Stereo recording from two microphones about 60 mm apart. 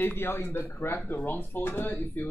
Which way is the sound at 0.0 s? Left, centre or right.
Left.